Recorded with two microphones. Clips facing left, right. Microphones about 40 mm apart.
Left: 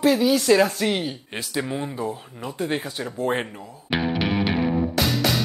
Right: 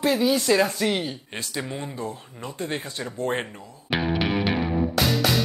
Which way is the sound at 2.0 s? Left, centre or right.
Left.